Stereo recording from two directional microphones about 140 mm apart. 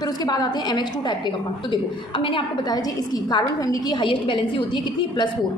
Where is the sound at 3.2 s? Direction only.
30° left (ahead or behind).